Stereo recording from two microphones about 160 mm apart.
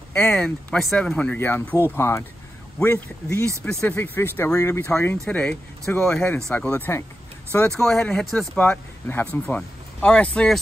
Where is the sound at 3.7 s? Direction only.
5° left (ahead or behind).